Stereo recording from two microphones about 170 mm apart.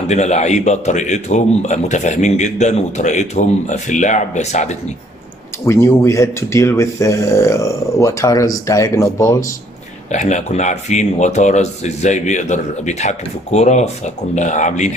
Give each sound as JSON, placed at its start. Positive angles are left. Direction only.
{"t": 0.0, "sound": "speech", "side_deg": 40}
{"t": 5.7, "sound": "speech", "side_deg": 15}
{"t": 10.1, "sound": "speech", "side_deg": 45}